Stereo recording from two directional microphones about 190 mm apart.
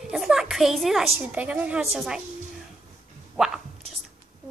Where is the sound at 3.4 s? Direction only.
5° right (ahead or behind).